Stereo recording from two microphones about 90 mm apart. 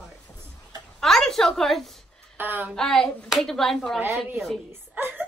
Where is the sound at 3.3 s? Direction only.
5° left (ahead or behind).